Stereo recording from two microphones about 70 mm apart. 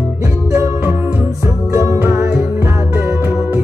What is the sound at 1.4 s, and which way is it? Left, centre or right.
Music, right.